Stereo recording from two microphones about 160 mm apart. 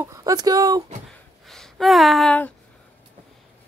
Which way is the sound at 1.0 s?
Centre (ahead or behind).